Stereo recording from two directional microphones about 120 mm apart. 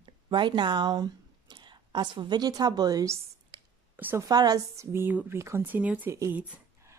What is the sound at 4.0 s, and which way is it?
Speech, 15° right (ahead or behind).